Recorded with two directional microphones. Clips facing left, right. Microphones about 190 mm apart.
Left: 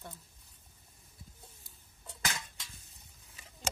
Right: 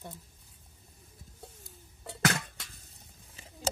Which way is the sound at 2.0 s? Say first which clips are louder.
Right 10 dB; 70° right (ahead or behind).